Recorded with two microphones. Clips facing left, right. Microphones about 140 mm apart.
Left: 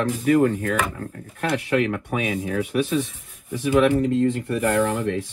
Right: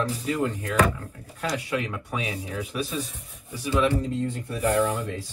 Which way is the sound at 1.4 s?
70° left (ahead or behind).